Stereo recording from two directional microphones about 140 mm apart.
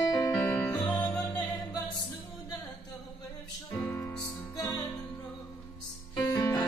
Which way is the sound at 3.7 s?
15° left (ahead or behind).